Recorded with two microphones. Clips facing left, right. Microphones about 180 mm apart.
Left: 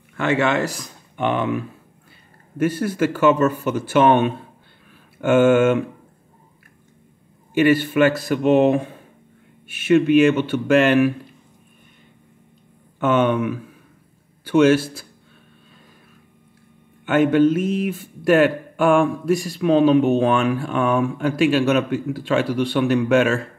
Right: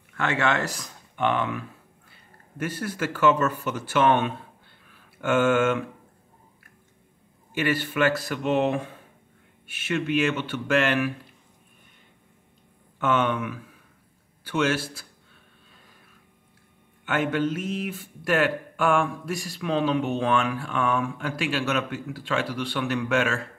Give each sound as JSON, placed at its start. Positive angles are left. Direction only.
{"t": 0.2, "sound": "speech", "side_deg": 15}
{"t": 2.6, "sound": "speech", "side_deg": 15}
{"t": 7.5, "sound": "speech", "side_deg": 20}
{"t": 13.0, "sound": "speech", "side_deg": 20}
{"t": 17.0, "sound": "speech", "side_deg": 20}
{"t": 20.0, "sound": "speech", "side_deg": 45}
{"t": 20.3, "sound": "speech", "side_deg": 20}